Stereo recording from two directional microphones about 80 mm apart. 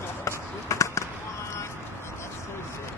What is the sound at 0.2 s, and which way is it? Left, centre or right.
Basketball bounce, left.